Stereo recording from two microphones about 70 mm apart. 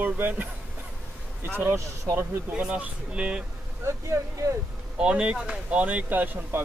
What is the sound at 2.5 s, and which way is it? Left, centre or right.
Speech, centre.